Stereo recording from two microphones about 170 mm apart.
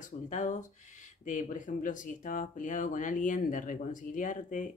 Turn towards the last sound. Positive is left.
turn(degrees=50)  # may be behind; listen again after turning